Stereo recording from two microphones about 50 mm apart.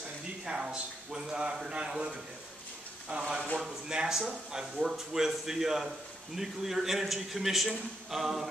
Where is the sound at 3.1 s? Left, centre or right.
Right.